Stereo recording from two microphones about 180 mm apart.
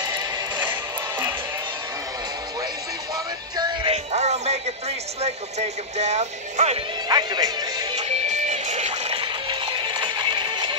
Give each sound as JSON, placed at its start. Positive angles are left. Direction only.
{"t": 0.0, "sound": "music", "side_deg": -25}
{"t": 3.5, "sound": "music", "side_deg": -25}
{"t": 3.9, "sound": "speech", "side_deg": -35}
{"t": 7.1, "sound": "music", "side_deg": -20}
{"t": 8.2, "sound": "music", "side_deg": -40}